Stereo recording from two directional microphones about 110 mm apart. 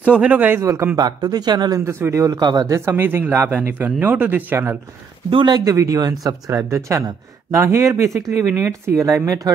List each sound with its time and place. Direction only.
0.0 s a man's voice: 10° right (ahead or behind)
0.9 s speech: 35° right (ahead or behind)
1.9 s speech: 20° right (ahead or behind)
5.3 s speech: 45° right (ahead or behind)